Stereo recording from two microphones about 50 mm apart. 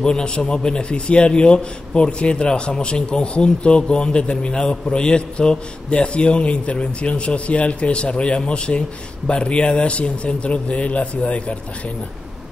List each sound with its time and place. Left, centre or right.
0.0 s a man's voice: centre